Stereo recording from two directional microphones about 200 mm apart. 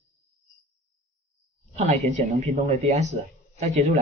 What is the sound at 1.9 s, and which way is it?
Speech, 35° right (ahead or behind).